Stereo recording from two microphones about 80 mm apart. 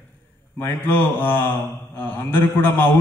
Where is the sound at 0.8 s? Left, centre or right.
Left.